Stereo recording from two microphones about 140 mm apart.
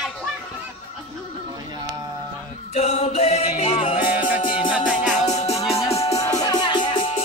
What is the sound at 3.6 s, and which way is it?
Music, 45° left (ahead or behind).